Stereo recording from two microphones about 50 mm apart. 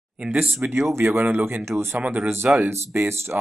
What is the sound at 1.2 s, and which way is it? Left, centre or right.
Speech, right.